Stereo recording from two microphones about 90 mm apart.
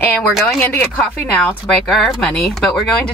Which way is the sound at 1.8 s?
5° left (ahead or behind).